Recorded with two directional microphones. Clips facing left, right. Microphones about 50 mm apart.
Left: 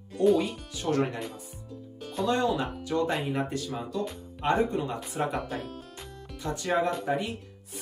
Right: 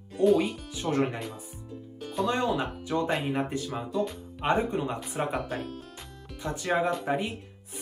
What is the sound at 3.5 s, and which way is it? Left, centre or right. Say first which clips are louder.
Speech: right 2 dB; centre.